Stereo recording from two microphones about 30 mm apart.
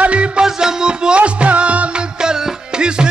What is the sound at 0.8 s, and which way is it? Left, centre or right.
Music, right.